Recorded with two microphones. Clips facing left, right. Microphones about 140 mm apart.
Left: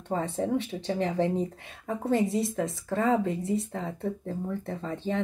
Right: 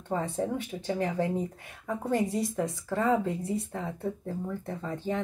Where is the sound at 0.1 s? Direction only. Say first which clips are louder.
Left 2 dB; 25° left (ahead or behind).